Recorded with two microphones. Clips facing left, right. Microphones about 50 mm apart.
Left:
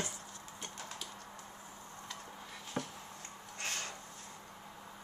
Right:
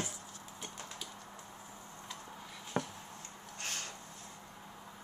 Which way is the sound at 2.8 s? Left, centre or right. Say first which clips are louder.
Right 3 dB; right.